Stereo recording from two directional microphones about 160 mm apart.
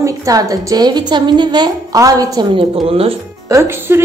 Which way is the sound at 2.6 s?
35° right (ahead or behind).